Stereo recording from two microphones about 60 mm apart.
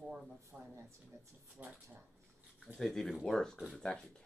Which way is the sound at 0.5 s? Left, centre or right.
Right.